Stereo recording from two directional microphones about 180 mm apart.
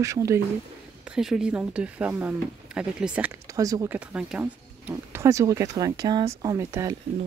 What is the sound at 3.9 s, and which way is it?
Speech, 5° right (ahead or behind).